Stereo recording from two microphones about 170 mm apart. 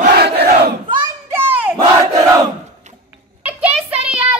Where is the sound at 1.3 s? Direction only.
10° right (ahead or behind).